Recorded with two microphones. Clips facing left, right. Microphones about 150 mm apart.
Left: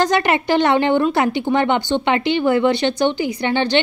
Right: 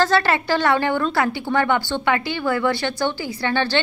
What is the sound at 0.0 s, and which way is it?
A woman's voice, 20° left (ahead or behind).